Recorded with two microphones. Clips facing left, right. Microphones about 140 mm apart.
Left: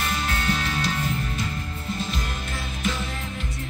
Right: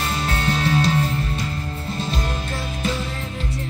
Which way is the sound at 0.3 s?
30° right (ahead or behind).